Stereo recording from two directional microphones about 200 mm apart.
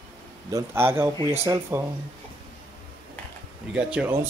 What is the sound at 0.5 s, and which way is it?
A man's voice, 10° right (ahead or behind).